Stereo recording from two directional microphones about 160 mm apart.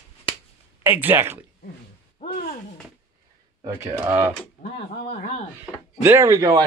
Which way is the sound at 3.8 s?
15° right (ahead or behind).